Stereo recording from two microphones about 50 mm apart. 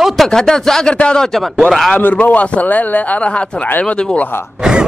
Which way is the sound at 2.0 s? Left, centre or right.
Left.